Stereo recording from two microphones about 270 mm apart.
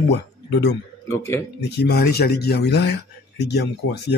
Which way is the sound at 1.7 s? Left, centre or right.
Left.